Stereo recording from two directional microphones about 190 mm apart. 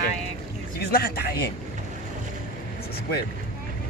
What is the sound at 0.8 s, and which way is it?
Speech, 55° left (ahead or behind).